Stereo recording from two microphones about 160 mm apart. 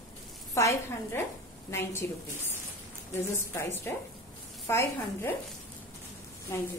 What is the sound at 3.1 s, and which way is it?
A woman's voice, 15° left (ahead or behind).